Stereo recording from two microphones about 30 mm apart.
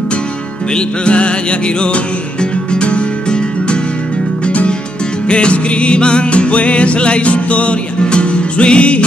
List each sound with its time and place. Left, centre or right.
0.7 s music: left
5.3 s music: left